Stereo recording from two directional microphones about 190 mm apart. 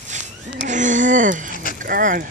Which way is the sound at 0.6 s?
40° right (ahead or behind).